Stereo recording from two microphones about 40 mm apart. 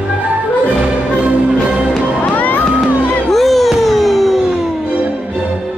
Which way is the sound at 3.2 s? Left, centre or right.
Centre.